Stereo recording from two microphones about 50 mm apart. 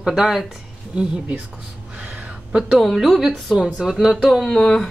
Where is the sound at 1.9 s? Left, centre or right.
Right.